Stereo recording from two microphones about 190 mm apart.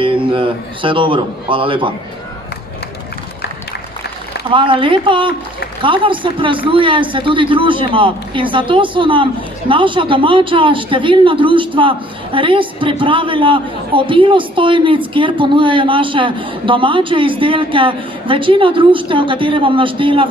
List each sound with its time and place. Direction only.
0.0 s speech: 25° right (ahead or behind)
4.5 s speech: 25° right (ahead or behind)